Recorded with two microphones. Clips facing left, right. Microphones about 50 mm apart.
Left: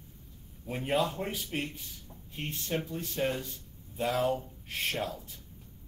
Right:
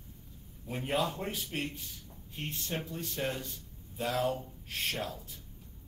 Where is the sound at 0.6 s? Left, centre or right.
Centre.